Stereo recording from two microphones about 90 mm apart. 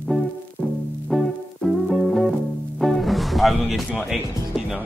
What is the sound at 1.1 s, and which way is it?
Music, centre (ahead or behind).